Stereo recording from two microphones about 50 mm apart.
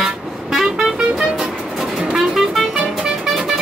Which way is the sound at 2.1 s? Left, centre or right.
Centre.